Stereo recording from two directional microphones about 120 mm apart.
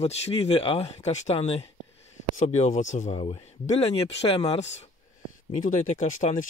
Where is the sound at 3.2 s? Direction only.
60° left (ahead or behind).